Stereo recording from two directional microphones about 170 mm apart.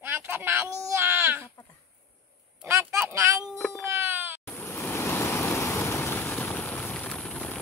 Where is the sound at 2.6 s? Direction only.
15° right (ahead or behind).